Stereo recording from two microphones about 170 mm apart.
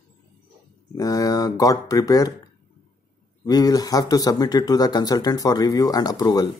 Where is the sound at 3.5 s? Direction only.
20° left (ahead or behind).